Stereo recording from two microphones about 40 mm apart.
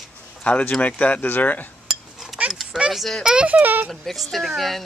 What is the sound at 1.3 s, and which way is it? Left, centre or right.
Speech, left.